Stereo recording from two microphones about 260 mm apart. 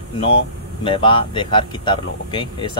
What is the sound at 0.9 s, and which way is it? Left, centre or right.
Speech, centre.